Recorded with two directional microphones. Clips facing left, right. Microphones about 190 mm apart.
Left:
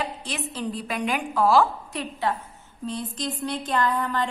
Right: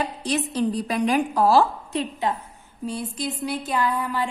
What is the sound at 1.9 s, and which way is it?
Speech, 20° right (ahead or behind).